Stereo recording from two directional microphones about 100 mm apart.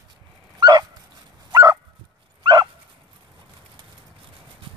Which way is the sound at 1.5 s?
35° right (ahead or behind).